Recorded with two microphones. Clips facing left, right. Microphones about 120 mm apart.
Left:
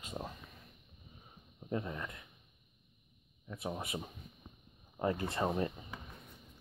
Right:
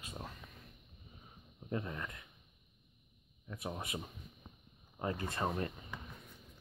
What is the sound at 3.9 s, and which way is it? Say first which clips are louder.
Speech: left 2 dB; 5° left (ahead or behind).